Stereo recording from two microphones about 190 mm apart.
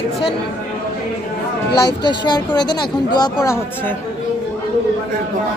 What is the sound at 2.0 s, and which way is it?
A woman's voice, 25° left (ahead or behind).